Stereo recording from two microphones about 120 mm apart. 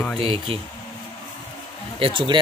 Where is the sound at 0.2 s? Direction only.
50° right (ahead or behind).